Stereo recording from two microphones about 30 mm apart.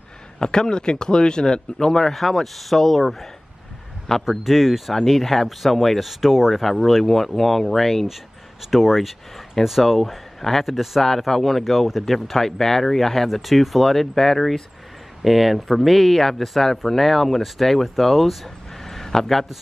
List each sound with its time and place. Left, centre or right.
0.4 s speech: left; by 3.3 s centre
4.3 s speech: centre
5.0 s speech: centre
6.0 s speech: centre
8.6 s speech: centre
11.0 s speech: centre
13.3 s speech: centre
13.9 s a man's voice: centre